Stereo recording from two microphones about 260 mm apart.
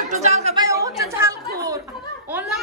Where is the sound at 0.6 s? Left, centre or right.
Centre.